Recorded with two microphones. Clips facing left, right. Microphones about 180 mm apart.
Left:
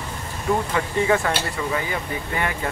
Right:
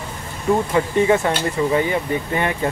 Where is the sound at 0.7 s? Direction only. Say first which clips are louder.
Right 5 dB; 25° right (ahead or behind).